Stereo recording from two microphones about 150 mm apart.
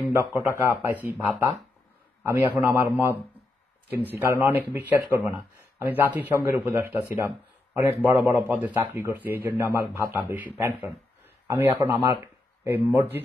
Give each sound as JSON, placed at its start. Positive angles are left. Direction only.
{"t": 0.1, "sound": "speech", "side_deg": -15}
{"t": 2.2, "sound": "speech", "side_deg": -15}
{"t": 3.9, "sound": "speech", "side_deg": -15}